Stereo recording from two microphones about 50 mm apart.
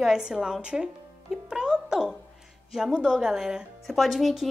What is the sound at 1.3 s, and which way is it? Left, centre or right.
Music, centre.